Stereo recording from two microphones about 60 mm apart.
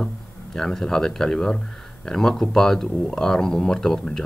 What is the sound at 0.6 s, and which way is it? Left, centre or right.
Speech, centre.